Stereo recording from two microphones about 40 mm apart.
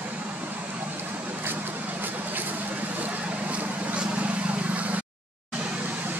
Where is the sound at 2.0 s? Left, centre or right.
Right.